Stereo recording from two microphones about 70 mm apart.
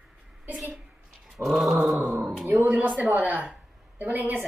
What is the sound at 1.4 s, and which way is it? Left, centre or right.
Dog, centre.